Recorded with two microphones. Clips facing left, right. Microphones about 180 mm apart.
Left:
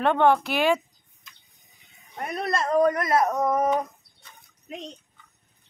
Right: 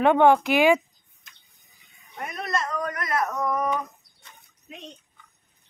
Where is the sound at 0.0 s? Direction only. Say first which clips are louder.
Right 3 dB; 10° right (ahead or behind).